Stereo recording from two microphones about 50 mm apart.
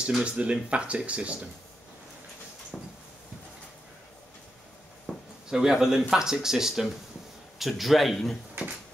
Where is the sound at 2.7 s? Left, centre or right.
Centre.